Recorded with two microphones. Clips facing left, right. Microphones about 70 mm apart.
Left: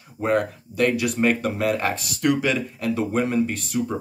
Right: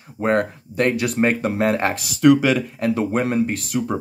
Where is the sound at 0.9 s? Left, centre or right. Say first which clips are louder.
Right 2 dB; right.